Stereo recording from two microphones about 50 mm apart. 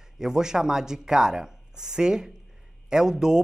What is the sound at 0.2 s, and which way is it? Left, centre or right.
Speech, centre.